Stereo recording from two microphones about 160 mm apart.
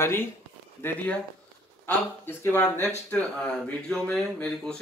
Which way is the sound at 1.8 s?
15° left (ahead or behind).